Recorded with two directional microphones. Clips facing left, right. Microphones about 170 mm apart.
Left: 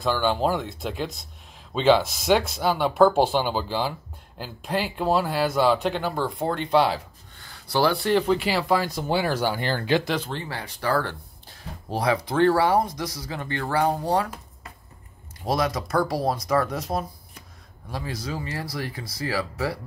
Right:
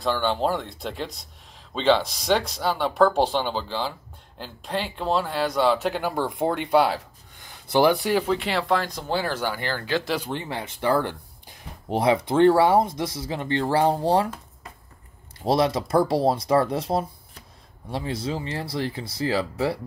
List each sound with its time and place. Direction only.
0.0 s speech: 5° left (ahead or behind)
7.3 s speech: 20° right (ahead or behind); by 10.0 s 20° left (ahead or behind)
10.0 s speech: 10° right (ahead or behind)
15.4 s speech: 30° right (ahead or behind)